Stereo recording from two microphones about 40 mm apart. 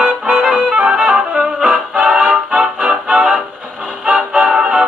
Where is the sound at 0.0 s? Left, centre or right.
Right.